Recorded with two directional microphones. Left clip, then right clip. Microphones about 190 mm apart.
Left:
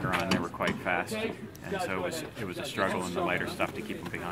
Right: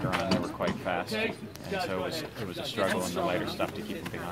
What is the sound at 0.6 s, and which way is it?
Drawer open or close, 20° right (ahead or behind).